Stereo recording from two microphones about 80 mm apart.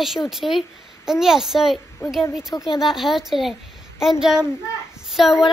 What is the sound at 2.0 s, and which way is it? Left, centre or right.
Speech, left.